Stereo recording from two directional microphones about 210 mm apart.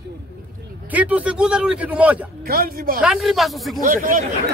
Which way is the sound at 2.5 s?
40° right (ahead or behind).